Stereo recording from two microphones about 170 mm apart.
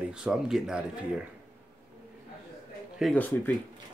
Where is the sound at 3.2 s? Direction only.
10° left (ahead or behind).